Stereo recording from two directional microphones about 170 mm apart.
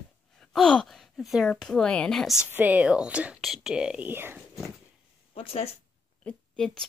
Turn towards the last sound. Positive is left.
turn(degrees=5)  # may be behind; listen again after turning